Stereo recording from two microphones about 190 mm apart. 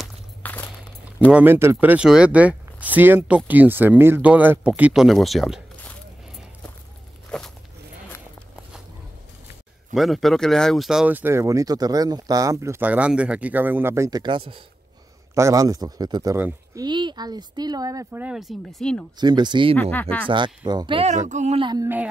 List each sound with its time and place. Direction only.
0.4 s walk: 10° left (ahead or behind)
1.3 s speech: 10° right (ahead or behind)
7.2 s walk: 5° left (ahead or behind)
9.9 s speech: centre (ahead or behind); by 18.2 s 20° right (ahead or behind)
18.2 s speech: centre (ahead or behind)
19.1 s speech: 20° right (ahead or behind)
19.8 s speech: 10° left (ahead or behind)
20.2 s speech: 25° right (ahead or behind)
21.3 s a sound: 35° right (ahead or behind)
21.8 s speech: 10° right (ahead or behind)